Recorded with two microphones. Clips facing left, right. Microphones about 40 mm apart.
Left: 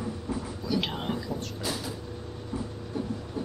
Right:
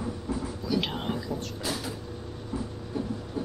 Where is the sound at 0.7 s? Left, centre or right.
Centre.